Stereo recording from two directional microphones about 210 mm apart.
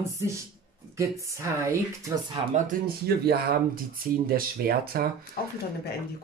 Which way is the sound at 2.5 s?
45° right (ahead or behind).